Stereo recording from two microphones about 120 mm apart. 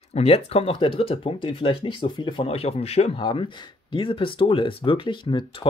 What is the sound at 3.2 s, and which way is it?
Speech, 45° left (ahead or behind).